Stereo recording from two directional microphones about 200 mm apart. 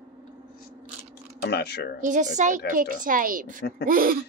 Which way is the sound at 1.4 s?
55° left (ahead or behind).